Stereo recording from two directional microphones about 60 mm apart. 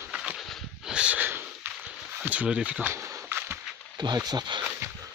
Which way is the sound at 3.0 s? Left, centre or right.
Right.